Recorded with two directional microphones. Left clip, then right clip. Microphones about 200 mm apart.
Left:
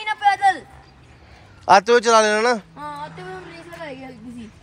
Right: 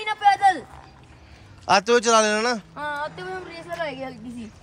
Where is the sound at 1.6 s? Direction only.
15° right (ahead or behind).